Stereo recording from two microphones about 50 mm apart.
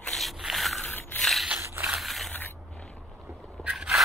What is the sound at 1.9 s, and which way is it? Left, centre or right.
Crushing, centre.